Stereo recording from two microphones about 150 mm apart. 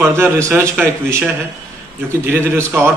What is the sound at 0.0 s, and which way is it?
Speech, 15° right (ahead or behind).